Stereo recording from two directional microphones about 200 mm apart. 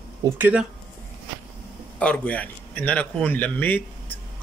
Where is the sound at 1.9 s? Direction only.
5° left (ahead or behind).